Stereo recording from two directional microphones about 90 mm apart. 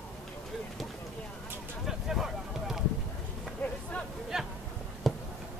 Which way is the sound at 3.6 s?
15° left (ahead or behind).